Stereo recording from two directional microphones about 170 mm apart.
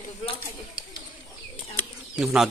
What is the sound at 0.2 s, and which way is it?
Speech, 30° left (ahead or behind).